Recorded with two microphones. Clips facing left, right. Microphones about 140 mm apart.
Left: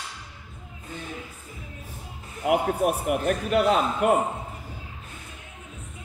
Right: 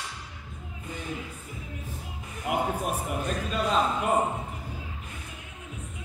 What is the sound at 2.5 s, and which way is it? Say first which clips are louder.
A man's voice: left 6 dB; 65° left (ahead or behind).